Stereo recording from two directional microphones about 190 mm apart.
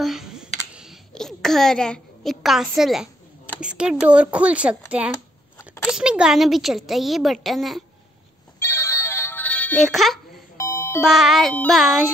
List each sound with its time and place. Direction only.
0.0 s computer keyboard: centre (ahead or behind)
3.6 s a woman's voice: 5° right (ahead or behind)
5.8 s a woman's voice: 5° right (ahead or behind)
8.5 s music: 15° left (ahead or behind)
10.6 s music: 15° left (ahead or behind)
11.0 s a woman's voice: centre (ahead or behind)